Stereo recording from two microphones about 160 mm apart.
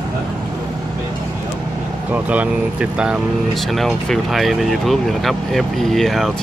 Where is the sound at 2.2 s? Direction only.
5° right (ahead or behind).